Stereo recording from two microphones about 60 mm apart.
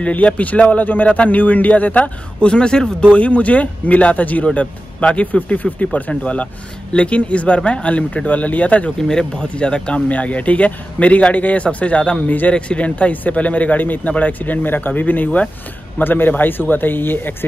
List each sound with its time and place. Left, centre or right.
0.0 s speech: left
2.4 s speech: centre
9.0 s speech: centre; by 17.5 s left